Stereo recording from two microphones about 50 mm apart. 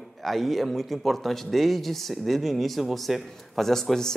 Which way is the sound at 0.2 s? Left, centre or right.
Centre.